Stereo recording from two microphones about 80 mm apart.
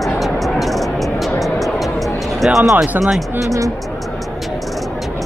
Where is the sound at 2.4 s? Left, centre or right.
Centre.